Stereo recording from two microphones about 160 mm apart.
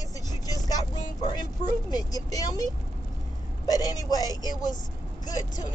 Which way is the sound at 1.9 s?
25° left (ahead or behind).